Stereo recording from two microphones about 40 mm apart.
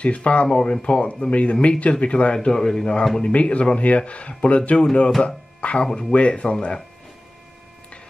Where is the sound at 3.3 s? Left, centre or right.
Left.